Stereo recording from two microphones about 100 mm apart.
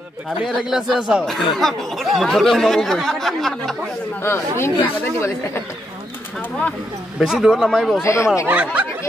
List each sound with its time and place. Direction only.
0.5 s speech: centre (ahead or behind)
1.2 s speech: 5° left (ahead or behind)
4.2 s speech: 25° left (ahead or behind)
7.2 s speech: 5° right (ahead or behind)
8.0 s speech: 30° left (ahead or behind)
8.5 s speech: 15° right (ahead or behind)